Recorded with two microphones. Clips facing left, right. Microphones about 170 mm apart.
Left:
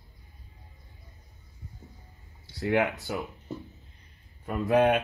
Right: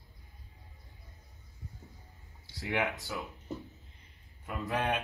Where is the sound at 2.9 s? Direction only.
20° left (ahead or behind).